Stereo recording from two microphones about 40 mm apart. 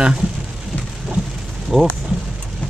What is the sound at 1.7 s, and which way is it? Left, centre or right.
Speech, centre.